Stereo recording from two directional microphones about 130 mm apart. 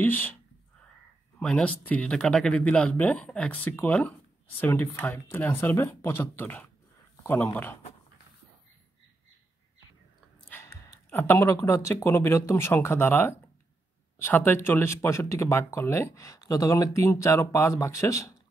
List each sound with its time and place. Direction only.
0.0 s speech: 15° left (ahead or behind)
1.4 s speech: 10° left (ahead or behind)
10.5 s speech: 15° left (ahead or behind)